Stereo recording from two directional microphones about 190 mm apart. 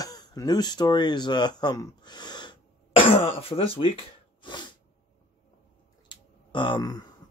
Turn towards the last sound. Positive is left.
turn(degrees=20)  # may be behind; listen again after turning